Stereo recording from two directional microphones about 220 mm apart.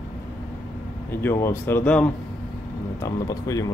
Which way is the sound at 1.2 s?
10° left (ahead or behind).